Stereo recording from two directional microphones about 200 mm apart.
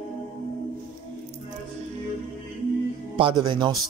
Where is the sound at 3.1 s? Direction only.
25° right (ahead or behind).